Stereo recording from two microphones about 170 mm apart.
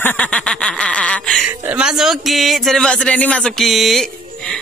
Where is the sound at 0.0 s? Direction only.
5° left (ahead or behind).